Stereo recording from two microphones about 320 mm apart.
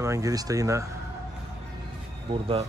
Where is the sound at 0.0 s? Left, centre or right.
Centre.